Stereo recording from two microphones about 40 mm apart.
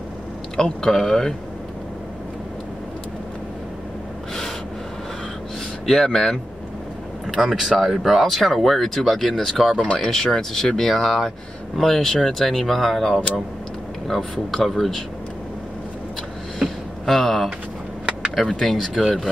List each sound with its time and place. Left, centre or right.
0.6 s speech: centre
5.9 s speech: centre
7.2 s speech: centre
16.6 s a sound: centre
18.5 s speech: centre
18.9 s speech: centre